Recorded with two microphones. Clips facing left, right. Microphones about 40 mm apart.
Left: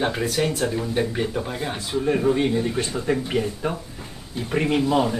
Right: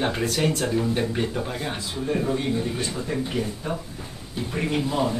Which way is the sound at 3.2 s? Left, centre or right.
Left.